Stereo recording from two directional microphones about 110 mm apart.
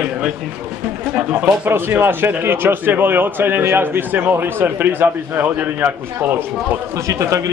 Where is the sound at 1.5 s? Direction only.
20° right (ahead or behind).